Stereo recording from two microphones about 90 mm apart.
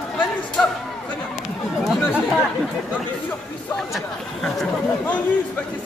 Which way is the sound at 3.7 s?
5° left (ahead or behind).